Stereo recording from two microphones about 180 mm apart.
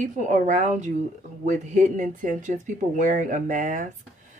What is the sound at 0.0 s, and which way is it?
Speech, 45° right (ahead or behind).